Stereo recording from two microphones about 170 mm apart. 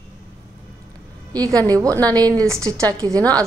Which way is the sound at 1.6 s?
20° right (ahead or behind).